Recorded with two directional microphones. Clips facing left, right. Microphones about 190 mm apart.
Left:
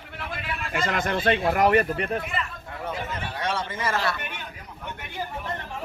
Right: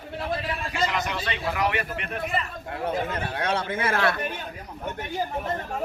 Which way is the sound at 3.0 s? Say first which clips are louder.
Right 2 dB; 55° right (ahead or behind).